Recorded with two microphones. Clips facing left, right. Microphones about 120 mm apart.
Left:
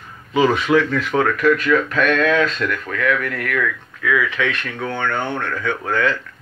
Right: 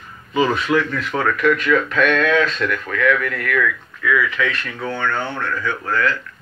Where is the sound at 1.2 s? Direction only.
40° left (ahead or behind).